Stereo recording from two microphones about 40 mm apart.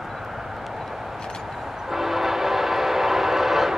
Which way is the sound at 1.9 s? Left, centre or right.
Centre.